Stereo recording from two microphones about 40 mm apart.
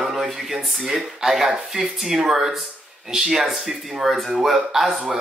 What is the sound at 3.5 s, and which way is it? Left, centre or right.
Speech, centre.